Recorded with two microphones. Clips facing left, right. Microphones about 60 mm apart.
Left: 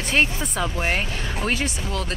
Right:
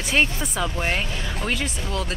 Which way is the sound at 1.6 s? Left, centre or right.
Centre.